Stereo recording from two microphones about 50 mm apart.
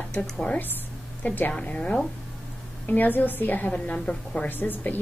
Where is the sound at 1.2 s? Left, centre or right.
Left.